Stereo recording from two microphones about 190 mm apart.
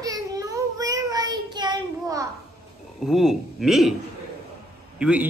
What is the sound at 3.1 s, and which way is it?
Speech, centre (ahead or behind).